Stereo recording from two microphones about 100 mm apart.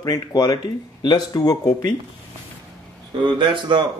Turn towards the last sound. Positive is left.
turn(degrees=-50)  # may be behind; listen again after turning